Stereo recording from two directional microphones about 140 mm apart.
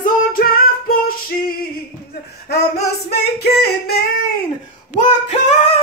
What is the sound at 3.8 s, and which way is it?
Female singing, 90° left.